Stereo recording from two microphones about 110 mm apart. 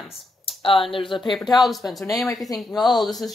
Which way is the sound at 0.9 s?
50° left (ahead or behind).